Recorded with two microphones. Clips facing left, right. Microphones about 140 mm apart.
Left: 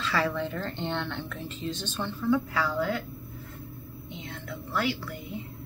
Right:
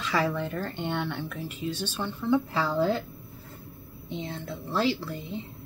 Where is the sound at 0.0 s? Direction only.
15° right (ahead or behind).